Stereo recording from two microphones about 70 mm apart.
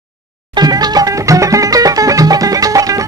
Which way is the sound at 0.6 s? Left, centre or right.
Right.